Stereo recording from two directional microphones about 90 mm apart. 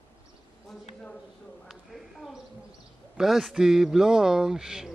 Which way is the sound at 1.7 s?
Centre (ahead or behind).